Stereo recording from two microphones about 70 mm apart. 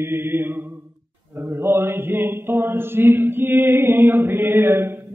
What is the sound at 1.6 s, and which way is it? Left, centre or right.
Mantra, right.